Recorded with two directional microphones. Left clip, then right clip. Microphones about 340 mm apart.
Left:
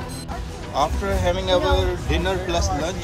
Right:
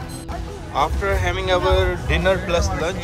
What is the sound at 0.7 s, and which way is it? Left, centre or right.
Speech, centre.